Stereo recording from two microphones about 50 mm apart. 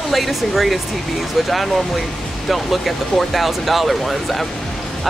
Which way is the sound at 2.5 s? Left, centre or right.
Centre.